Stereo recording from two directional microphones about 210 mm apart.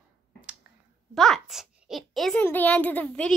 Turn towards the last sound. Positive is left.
turn(degrees=5)  # may be behind; listen again after turning